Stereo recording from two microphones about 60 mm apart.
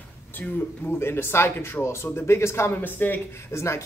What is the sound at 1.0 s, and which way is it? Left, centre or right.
Speech, left.